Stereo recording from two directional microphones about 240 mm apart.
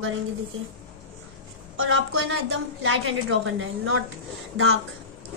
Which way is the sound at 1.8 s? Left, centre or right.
Right.